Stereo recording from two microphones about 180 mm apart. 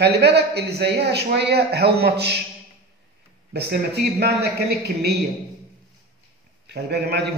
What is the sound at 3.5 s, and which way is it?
Speech, 65° right (ahead or behind).